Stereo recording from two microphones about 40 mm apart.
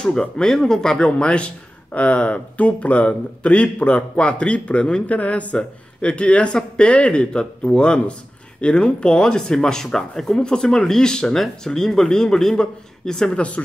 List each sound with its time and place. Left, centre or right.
0.0 s a man's voice: centre
1.1 s a man's voice: left
11.3 s a man's voice: centre